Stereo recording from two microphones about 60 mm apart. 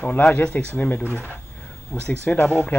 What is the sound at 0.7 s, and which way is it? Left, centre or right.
Speech, left.